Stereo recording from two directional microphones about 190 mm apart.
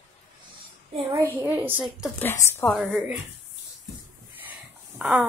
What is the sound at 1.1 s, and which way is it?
A woman's voice, 10° right (ahead or behind).